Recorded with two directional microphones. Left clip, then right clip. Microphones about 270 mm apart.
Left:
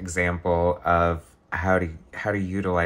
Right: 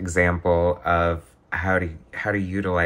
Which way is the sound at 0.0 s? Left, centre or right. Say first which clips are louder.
Right 4 dB; centre.